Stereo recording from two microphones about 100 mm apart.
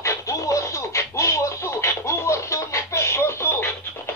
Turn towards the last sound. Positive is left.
turn(degrees=25)  # may be behind; listen again after turning